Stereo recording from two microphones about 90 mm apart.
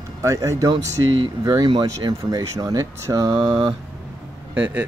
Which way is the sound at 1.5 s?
55° right (ahead or behind).